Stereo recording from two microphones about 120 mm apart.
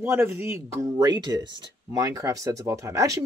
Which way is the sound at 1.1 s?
35° right (ahead or behind).